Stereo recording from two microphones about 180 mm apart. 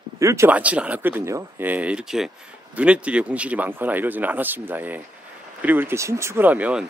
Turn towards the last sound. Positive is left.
turn(degrees=-10)  # may be behind; listen again after turning